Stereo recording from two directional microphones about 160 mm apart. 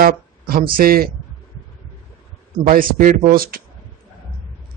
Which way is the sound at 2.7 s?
60° right (ahead or behind).